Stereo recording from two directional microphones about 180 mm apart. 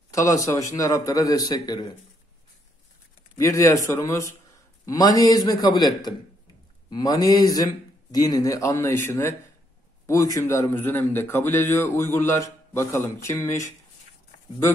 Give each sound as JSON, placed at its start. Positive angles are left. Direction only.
{"t": 0.1, "sound": "speech", "side_deg": 20}
{"t": 3.3, "sound": "a man's voice", "side_deg": 15}